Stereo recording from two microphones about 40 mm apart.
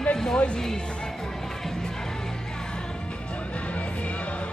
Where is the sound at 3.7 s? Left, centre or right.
Left.